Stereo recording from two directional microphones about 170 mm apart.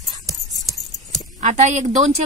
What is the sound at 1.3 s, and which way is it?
Speech, 45° right (ahead or behind).